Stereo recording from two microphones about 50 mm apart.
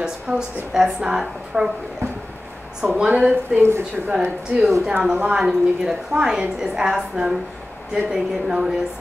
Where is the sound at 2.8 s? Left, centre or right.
Centre.